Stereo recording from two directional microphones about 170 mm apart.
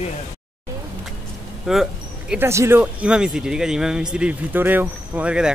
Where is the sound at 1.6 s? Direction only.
Centre (ahead or behind).